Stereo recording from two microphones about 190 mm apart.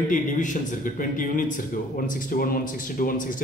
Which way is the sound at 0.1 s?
45° left (ahead or behind).